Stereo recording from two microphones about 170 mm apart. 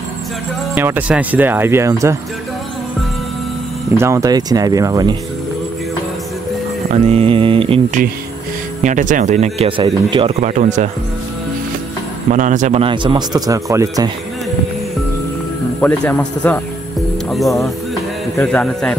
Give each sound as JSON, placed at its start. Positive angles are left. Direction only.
{"t": 0.7, "sound": "speech", "side_deg": -10}
{"t": 3.9, "sound": "speech", "side_deg": -15}
{"t": 6.9, "sound": "mantra", "side_deg": -35}
{"t": 8.8, "sound": "speech", "side_deg": -50}
{"t": 10.4, "sound": "speech", "side_deg": -45}
{"t": 12.3, "sound": "speech", "side_deg": -50}
{"t": 12.8, "sound": "speech", "side_deg": -30}
{"t": 15.8, "sound": "speech", "side_deg": 5}
{"t": 18.4, "sound": "speech", "side_deg": 5}